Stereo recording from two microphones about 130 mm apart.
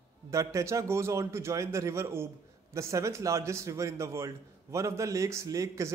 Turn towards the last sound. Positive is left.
turn(degrees=-25)  # may be behind; listen again after turning